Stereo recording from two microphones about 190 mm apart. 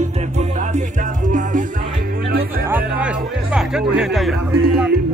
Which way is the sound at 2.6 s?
10° right (ahead or behind).